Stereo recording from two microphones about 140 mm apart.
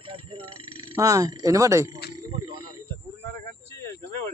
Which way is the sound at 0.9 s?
25° right (ahead or behind).